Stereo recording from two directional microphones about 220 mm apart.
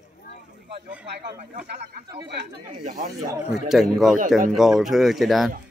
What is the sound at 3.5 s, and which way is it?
Speech, centre (ahead or behind).